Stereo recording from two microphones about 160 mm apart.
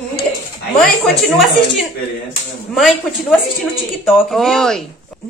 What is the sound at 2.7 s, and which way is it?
Speech, centre (ahead or behind).